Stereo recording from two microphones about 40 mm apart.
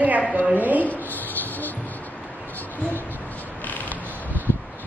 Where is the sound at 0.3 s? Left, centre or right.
Right.